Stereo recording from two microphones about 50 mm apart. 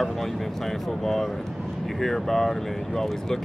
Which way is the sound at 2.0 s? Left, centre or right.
Centre.